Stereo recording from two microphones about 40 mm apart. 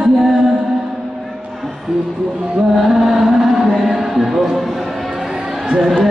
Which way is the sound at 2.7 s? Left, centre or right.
Centre.